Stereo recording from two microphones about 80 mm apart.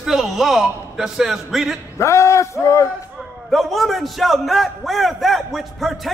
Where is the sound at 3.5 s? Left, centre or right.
Centre.